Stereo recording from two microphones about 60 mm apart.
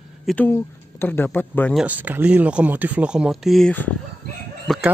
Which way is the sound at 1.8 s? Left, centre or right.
Right.